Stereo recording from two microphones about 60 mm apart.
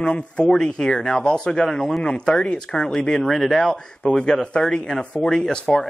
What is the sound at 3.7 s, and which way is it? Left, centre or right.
Speech, centre.